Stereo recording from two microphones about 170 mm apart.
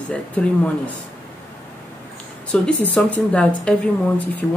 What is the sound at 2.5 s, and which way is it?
Speech, 10° left (ahead or behind).